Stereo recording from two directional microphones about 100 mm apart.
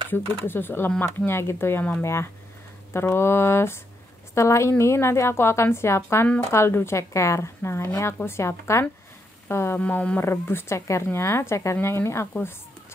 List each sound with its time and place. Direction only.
0.1 s speech: 20° left (ahead or behind)
9.8 s speech: 15° left (ahead or behind)